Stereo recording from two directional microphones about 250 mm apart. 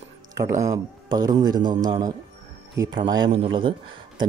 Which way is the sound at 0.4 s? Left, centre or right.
Centre.